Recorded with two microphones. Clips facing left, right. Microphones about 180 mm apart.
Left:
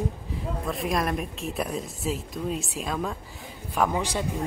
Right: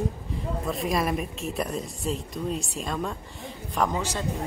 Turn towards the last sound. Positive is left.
turn(degrees=5)  # may be behind; listen again after turning